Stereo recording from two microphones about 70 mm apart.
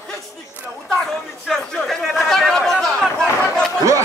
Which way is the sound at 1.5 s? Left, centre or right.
Centre.